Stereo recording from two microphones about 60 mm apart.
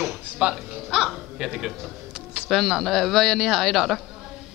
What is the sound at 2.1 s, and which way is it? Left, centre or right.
Music, centre.